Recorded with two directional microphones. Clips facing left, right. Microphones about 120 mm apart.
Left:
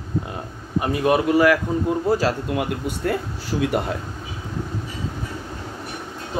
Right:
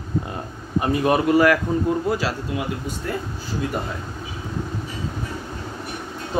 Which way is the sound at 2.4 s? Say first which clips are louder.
Left 3 dB; 60° left (ahead or behind).